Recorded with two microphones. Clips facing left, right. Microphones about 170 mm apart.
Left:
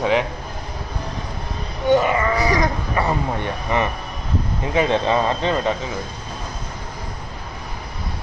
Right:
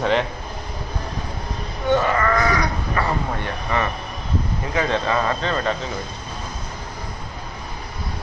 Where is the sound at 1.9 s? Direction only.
15° left (ahead or behind).